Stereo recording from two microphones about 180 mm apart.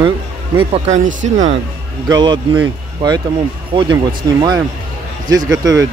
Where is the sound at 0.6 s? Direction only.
40° right (ahead or behind).